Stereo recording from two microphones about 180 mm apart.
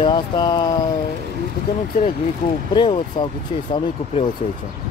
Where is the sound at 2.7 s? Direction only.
25° left (ahead or behind).